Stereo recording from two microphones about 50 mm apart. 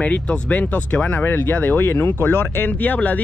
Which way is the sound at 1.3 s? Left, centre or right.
Left.